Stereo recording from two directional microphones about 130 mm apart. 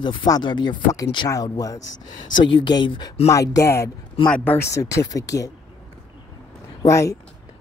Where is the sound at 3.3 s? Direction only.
25° left (ahead or behind).